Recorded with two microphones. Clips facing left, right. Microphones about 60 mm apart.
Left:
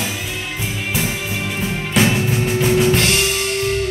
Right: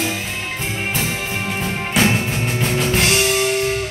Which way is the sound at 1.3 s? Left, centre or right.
Right.